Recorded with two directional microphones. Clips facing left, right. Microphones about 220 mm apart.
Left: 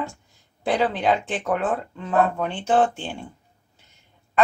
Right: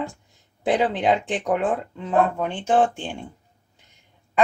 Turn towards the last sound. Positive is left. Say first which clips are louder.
# even
turn(degrees=-15)  # may be behind; listen again after turning